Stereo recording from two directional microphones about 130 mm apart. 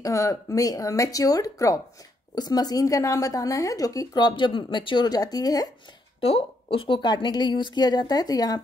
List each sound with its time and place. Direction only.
0.0 s a woman's voice: 25° left (ahead or behind)
6.2 s a woman's voice: 45° left (ahead or behind); by 8.5 s 30° left (ahead or behind)